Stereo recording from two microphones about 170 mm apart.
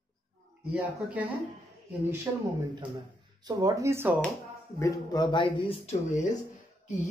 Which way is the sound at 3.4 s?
20° right (ahead or behind).